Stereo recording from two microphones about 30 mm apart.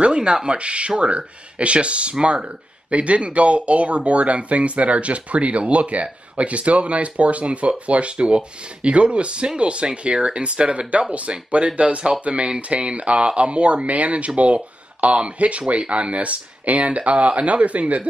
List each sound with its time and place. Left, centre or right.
0.0 s speech: right
8.2 s speech: right